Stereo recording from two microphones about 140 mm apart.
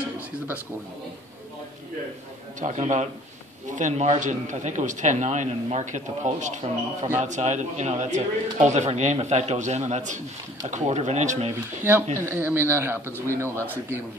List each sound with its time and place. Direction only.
2.6 s speech: 60° right (ahead or behind)
12.3 s speech: 15° right (ahead or behind)
13.0 s speech: 15° left (ahead or behind)
13.4 s speech: 20° right (ahead or behind)